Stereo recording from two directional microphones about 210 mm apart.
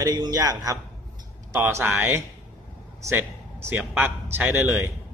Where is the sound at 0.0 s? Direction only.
20° right (ahead or behind).